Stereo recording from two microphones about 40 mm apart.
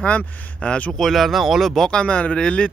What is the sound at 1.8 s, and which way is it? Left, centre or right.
Speech, left.